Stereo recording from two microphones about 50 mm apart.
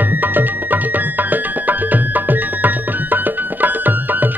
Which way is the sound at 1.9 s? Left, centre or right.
Right.